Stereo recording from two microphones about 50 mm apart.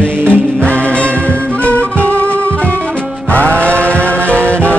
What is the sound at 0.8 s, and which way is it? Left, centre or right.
Music, left.